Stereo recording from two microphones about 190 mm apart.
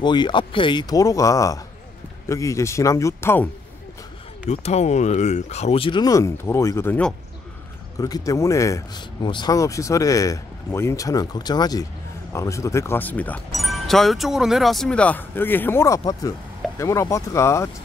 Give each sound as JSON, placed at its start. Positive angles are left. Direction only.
{"t": 0.0, "sound": "speech", "side_deg": 25}
{"t": 4.5, "sound": "speech", "side_deg": 35}
{"t": 8.0, "sound": "speech", "side_deg": 20}